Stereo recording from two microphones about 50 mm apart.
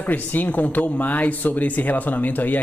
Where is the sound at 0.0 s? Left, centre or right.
Left.